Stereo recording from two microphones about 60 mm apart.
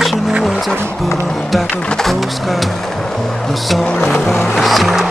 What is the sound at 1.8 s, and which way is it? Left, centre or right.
Speech, centre.